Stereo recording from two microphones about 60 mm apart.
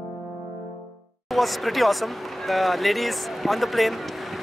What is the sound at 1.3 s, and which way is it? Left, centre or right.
Speech, centre.